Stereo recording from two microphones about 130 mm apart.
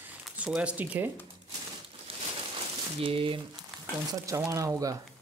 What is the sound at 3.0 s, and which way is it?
Speech, 40° right (ahead or behind).